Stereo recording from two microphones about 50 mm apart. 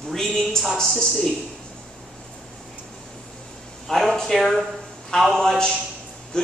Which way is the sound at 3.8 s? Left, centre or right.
Centre.